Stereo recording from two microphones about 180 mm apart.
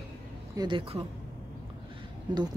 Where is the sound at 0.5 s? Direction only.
25° right (ahead or behind).